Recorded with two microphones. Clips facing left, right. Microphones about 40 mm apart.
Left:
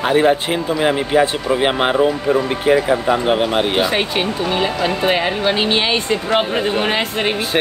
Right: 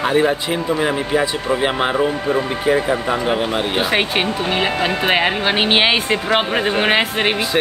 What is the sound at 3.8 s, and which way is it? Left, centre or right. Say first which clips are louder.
Speech: even; right.